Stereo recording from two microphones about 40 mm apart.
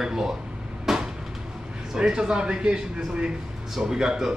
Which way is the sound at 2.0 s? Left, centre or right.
Right.